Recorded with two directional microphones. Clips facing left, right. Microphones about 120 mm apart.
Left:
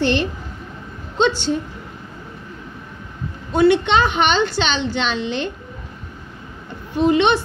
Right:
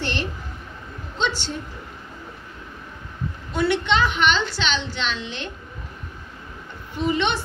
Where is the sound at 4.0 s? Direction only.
65° left (ahead or behind).